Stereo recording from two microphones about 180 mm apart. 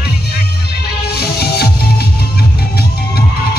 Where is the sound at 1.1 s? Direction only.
60° left (ahead or behind).